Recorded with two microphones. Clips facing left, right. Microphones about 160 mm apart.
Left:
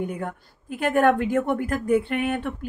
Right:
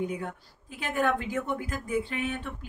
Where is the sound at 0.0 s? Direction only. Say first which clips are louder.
Left 3 dB; 55° left (ahead or behind).